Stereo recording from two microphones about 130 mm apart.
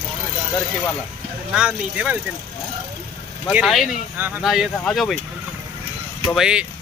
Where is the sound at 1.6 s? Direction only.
10° right (ahead or behind).